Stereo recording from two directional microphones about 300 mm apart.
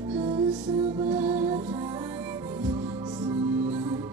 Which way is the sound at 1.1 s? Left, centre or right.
Centre.